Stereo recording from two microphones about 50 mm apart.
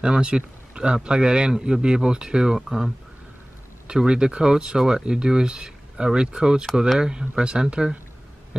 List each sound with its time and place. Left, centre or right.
0.0 s a man's voice: centre